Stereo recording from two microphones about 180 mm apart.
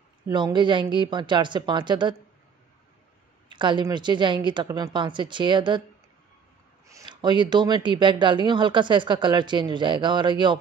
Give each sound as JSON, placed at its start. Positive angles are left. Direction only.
{"t": 0.3, "sound": "speech", "side_deg": -25}
{"t": 3.4, "sound": "speech", "side_deg": -25}
{"t": 6.9, "sound": "speech", "side_deg": -20}